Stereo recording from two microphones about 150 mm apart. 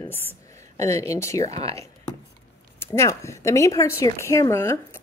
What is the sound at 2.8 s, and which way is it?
A woman's voice, 15° left (ahead or behind).